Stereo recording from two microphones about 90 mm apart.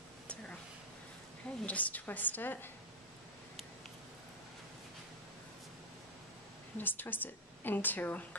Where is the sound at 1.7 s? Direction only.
15° left (ahead or behind).